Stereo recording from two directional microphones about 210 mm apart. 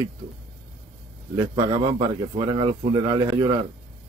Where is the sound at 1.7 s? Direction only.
25° right (ahead or behind).